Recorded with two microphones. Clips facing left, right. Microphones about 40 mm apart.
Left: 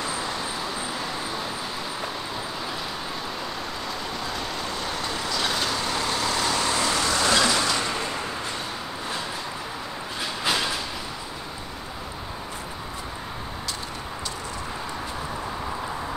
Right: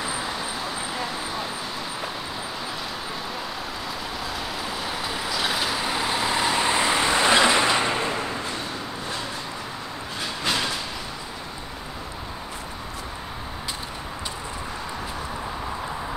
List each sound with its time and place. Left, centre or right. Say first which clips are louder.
0.0 s vehicle: even; centre
4.6 s vehicle: even; centre
10.4 s a sound: even; centre